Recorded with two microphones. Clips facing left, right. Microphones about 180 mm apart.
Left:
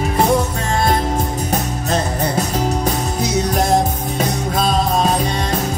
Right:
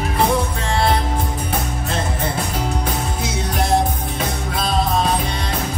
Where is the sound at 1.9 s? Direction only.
40° left (ahead or behind).